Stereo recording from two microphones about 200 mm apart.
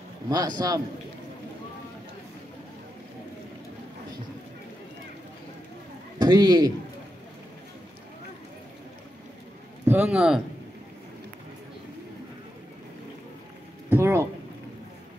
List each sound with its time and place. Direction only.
0.3 s a man's voice: 20° right (ahead or behind)
6.1 s a man's voice: 20° right (ahead or behind)
9.8 s speech: 5° right (ahead or behind)
13.8 s a sound: 10° right (ahead or behind)